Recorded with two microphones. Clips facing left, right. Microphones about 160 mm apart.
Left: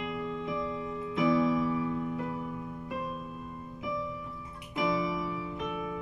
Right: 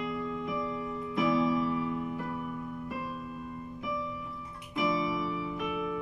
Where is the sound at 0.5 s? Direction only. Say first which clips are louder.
Even; 25° left (ahead or behind).